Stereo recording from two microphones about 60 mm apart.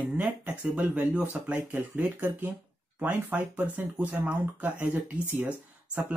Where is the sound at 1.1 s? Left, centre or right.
Right.